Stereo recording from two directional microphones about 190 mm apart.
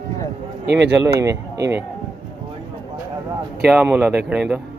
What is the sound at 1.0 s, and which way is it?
Speech, 15° right (ahead or behind).